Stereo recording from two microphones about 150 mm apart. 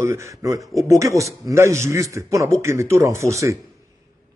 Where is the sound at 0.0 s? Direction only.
20° right (ahead or behind).